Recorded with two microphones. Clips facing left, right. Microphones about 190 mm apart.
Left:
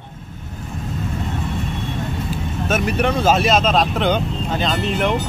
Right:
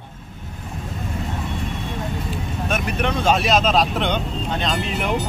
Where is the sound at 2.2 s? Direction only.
5° left (ahead or behind).